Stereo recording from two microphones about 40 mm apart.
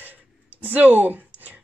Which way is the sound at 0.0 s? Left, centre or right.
Right.